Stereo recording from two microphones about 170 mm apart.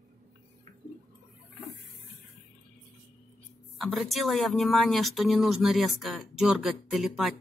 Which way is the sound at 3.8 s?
Centre (ahead or behind).